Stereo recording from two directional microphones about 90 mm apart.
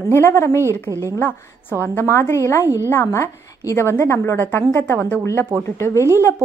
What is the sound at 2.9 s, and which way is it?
A woman's voice, 30° left (ahead or behind).